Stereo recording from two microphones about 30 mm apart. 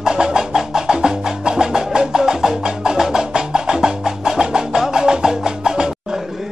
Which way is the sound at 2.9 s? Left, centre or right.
Centre.